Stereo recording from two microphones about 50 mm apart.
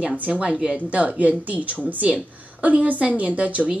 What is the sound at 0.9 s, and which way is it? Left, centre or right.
Speech, right.